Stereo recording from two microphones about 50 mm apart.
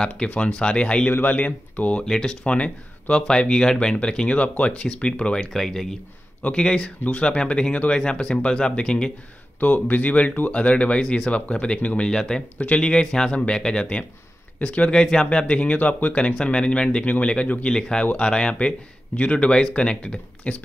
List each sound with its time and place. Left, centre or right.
0.1 s speech: left
2.0 s speech: centre
2.4 s speech: left
5.5 s speech: centre
9.6 s speech: left; by 12.4 s centre
12.5 s speech: left
15.0 s speech: centre